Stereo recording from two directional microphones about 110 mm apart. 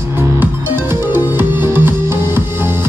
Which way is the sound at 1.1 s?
20° right (ahead or behind).